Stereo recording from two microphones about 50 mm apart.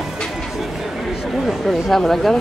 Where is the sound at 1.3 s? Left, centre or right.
Centre.